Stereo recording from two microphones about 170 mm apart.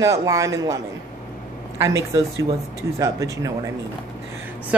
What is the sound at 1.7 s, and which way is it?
Speech, 20° right (ahead or behind).